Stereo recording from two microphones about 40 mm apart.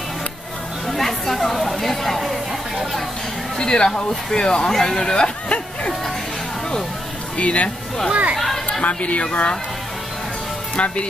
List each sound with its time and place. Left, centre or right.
0.8 s chatter: centre
3.5 s speech: centre
7.3 s speech: left
8.1 s speech: right
8.8 s speech: left
10.8 s speech: left